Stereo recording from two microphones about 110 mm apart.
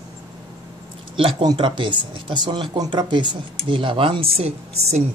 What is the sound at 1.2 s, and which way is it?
Speech, 55° right (ahead or behind).